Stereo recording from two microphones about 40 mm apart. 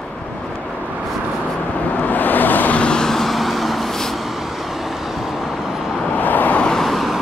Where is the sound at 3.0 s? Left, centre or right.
Centre.